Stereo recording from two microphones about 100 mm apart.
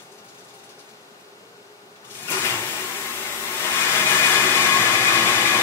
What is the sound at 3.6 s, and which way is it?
Hair dryer, 25° left (ahead or behind).